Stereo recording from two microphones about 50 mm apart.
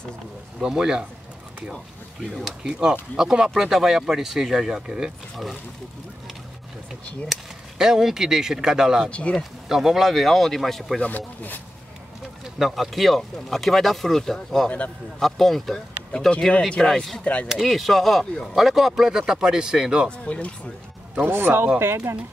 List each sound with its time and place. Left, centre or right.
0.6 s speech: centre
2.6 s speech: centre
7.8 s speech: centre
11.0 s speech: left
12.5 s speech: centre
16.3 s speech: centre
16.8 s speech: centre
17.2 s speech: left
17.5 s speech: centre
20.1 s speech: left
21.3 s speech: right